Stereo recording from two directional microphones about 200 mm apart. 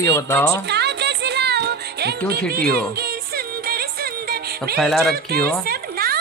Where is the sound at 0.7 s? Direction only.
55° right (ahead or behind).